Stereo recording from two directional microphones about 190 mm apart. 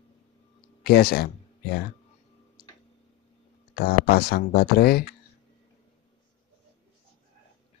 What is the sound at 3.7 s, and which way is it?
Speech, 55° left (ahead or behind).